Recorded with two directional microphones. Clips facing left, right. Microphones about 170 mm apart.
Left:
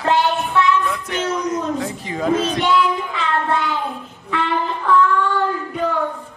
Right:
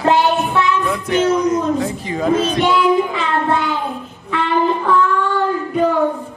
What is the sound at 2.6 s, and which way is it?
Child singing, 10° right (ahead or behind).